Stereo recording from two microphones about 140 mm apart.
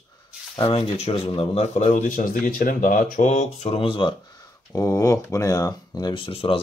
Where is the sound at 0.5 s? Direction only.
35° left (ahead or behind).